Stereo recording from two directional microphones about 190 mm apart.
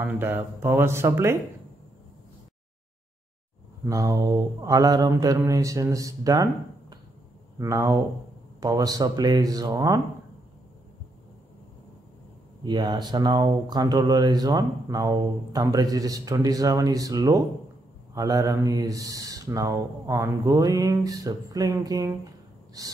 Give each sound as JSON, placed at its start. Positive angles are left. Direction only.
{"t": 0.0, "sound": "speech", "side_deg": -10}
{"t": 3.8, "sound": "speech", "side_deg": -15}
{"t": 12.6, "sound": "speech", "side_deg": -25}